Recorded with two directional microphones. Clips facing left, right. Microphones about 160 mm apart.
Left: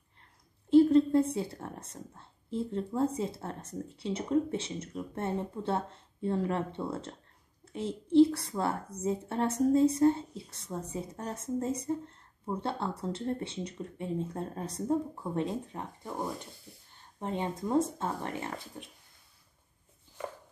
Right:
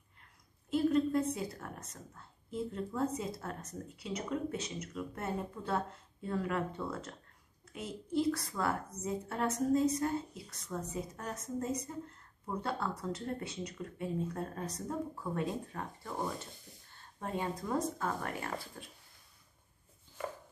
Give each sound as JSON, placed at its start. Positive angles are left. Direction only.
{"t": 0.2, "sound": "a woman's voice", "side_deg": 30}